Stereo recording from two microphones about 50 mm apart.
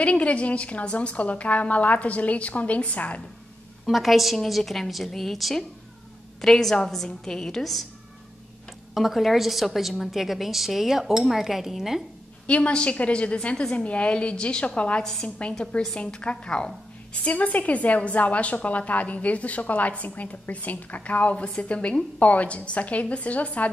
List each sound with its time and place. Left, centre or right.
0.0 s a woman's voice: left
3.8 s a woman's voice: centre
8.9 s a woman's voice: centre
12.4 s a woman's voice: left